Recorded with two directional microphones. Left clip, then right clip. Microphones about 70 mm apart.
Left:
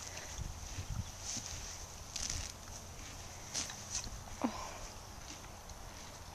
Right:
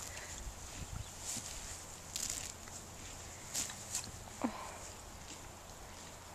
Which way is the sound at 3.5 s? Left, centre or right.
Centre.